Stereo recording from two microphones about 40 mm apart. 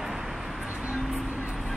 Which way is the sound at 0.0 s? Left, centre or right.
Centre.